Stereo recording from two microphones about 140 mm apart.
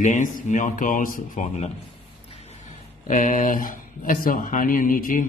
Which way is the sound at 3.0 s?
65° left (ahead or behind).